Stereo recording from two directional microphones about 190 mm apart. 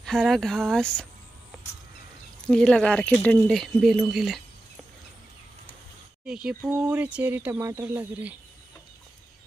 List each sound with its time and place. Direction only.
0.0 s speech: centre (ahead or behind)
2.4 s speech: 5° left (ahead or behind)
6.2 s speech: 5° right (ahead or behind)